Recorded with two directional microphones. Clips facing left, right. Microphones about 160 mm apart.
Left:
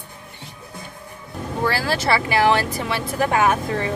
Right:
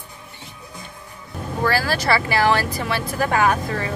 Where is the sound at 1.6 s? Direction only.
25° left (ahead or behind).